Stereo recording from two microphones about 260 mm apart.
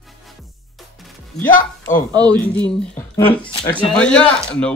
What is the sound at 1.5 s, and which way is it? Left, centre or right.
Speech, left.